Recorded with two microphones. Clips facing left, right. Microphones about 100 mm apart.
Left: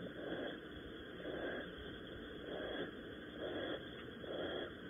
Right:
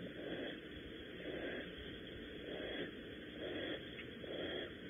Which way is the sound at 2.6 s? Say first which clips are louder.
Left 2 dB; 25° left (ahead or behind).